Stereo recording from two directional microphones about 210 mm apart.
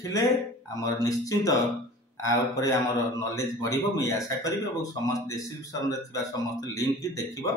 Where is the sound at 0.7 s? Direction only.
15° left (ahead or behind).